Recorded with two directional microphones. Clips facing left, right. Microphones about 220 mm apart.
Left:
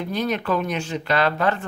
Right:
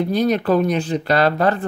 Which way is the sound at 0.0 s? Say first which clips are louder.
Right 7 dB; 35° right (ahead or behind).